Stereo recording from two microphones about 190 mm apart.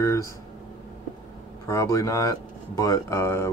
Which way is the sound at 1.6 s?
15° left (ahead or behind).